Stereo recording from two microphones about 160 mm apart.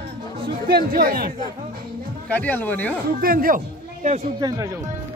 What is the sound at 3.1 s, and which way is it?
Speech, 65° right (ahead or behind).